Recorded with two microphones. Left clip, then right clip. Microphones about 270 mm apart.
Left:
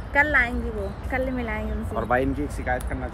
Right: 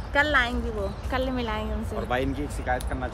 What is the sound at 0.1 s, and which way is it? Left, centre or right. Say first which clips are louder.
A woman's voice: left 2 dB; centre.